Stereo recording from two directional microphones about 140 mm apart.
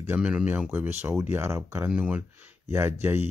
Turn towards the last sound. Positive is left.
turn(degrees=-15)  # may be behind; listen again after turning